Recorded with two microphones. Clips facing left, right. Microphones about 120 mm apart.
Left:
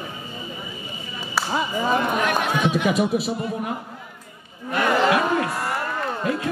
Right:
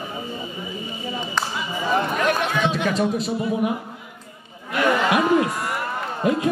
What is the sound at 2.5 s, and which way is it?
Speech, 15° left (ahead or behind).